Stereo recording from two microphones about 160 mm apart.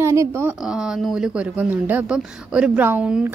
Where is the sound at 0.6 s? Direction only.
5° right (ahead or behind).